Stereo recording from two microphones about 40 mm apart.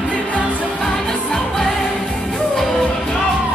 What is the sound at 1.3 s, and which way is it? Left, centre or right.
Music, centre.